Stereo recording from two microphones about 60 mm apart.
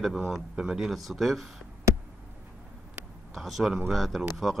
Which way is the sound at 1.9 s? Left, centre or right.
Right.